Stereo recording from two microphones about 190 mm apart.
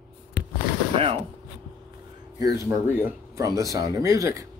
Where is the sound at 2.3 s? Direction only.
15° right (ahead or behind).